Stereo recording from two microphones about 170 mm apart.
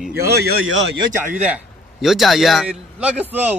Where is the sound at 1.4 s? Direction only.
5° right (ahead or behind).